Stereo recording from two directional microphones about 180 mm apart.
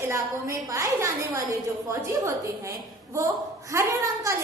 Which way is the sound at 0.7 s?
20° right (ahead or behind).